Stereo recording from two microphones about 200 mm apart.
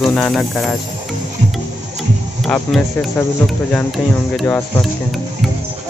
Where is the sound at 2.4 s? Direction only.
Centre (ahead or behind).